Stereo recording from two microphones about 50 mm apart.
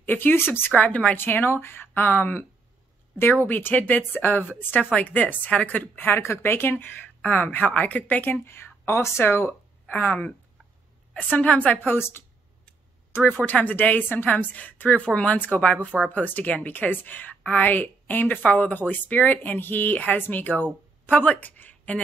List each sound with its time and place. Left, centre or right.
0.0 s speech: left
0.7 s speech: left
1.1 s speech: left
3.4 s a woman's voice: left
6.0 s speech: left
7.2 s a woman's voice: left
8.5 s speech: left
9.8 s a woman's voice: left
11.8 s a woman's voice: left